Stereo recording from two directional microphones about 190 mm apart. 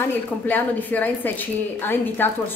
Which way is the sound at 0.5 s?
10° left (ahead or behind).